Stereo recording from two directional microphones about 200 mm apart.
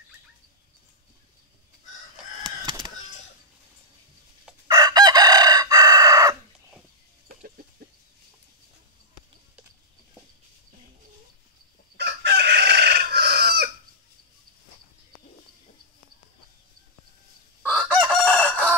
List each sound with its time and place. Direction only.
2.4 s a sound: 25° right (ahead or behind)
4.6 s chicken: 20° right (ahead or behind)
12.0 s chicken: 55° right (ahead or behind)
17.6 s chicken: 5° left (ahead or behind)